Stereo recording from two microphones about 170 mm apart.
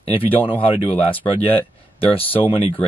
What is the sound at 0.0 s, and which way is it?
Speech, 35° left (ahead or behind).